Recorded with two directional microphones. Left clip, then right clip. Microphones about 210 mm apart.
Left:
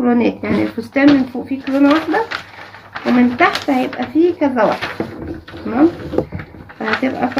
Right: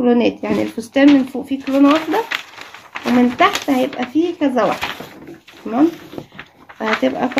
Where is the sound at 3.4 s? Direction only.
50° right (ahead or behind).